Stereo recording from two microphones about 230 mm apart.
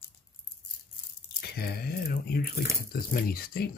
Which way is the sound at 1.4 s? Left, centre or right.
Left.